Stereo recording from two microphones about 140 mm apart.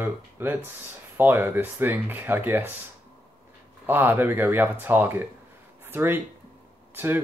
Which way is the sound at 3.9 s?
15° right (ahead or behind).